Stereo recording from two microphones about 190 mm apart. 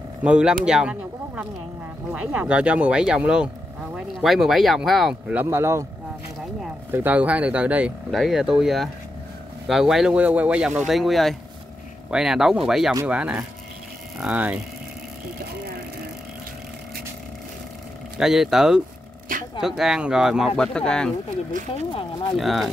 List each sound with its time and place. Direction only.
0.2 s speech: 5° right (ahead or behind)
6.9 s speech: 10° right (ahead or behind)
18.1 s speech: centre (ahead or behind)
19.3 s speech: 45° right (ahead or behind)
19.6 s speech: centre (ahead or behind)
22.4 s speech: centre (ahead or behind)